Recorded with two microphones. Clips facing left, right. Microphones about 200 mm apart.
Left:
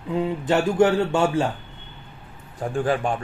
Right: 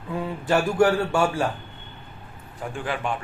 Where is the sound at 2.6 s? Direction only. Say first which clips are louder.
Left 6 dB; 40° left (ahead or behind).